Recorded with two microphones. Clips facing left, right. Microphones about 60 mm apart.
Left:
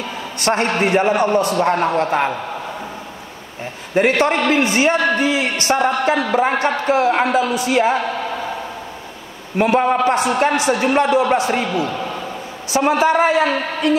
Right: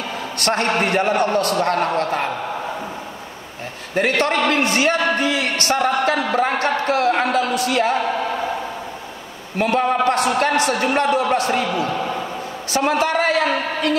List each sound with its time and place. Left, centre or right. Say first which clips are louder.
0.4 s a man's voice: left 2 dB; centre
4.0 s a man's voice: left 2 dB; left
9.6 s a man's voice: left 3 dB; left
12.7 s a man's voice: left 4 dB; centre